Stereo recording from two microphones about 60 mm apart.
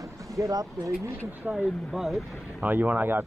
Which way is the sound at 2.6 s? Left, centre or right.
Right.